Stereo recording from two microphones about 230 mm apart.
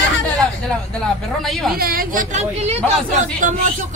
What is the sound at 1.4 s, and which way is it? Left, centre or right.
Speech, centre.